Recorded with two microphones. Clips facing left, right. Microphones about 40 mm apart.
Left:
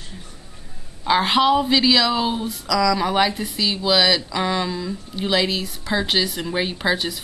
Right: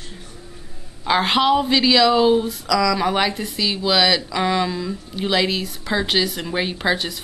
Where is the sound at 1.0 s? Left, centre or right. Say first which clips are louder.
Even; centre.